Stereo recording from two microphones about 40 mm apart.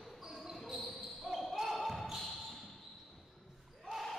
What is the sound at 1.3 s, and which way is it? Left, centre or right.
Basketball bounce, centre.